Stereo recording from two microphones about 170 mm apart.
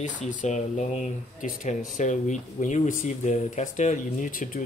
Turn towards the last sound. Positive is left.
turn(degrees=55)  # may be behind; listen again after turning